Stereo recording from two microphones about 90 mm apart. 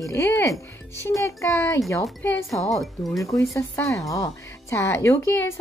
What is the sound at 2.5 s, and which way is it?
Speech, 35° left (ahead or behind).